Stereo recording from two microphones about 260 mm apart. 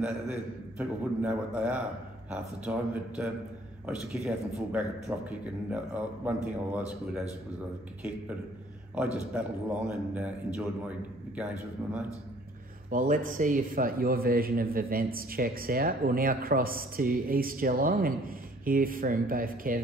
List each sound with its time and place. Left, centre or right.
0.0 s a man's voice: centre
8.9 s a man's voice: centre
12.9 s a man's voice: right